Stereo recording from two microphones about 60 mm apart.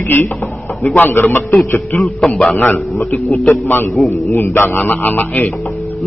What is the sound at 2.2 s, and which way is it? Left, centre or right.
A man's voice, left.